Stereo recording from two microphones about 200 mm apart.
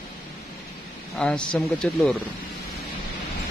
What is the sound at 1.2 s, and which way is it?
Speech, 5° left (ahead or behind).